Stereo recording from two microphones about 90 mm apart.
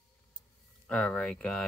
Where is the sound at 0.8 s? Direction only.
15° left (ahead or behind).